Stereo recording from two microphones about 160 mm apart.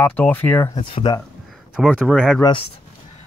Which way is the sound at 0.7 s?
25° left (ahead or behind).